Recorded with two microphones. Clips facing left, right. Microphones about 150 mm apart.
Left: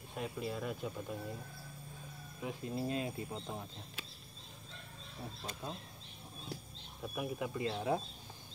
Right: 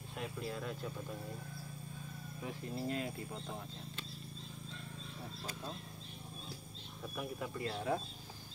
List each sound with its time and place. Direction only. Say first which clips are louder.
0.1 s speech: left 2 dB; 10° left (ahead or behind)
2.4 s speech: left 2 dB; 15° left (ahead or behind)
7.0 s speech: left 3 dB; 10° left (ahead or behind)